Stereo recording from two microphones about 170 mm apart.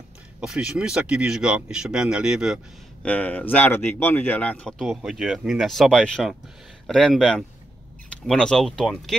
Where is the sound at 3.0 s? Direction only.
10° left (ahead or behind).